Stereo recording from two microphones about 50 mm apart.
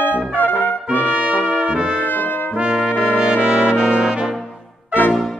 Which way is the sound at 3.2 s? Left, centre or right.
Right.